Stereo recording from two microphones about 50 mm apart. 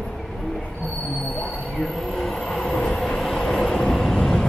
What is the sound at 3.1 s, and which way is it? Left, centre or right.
Vehicle, centre.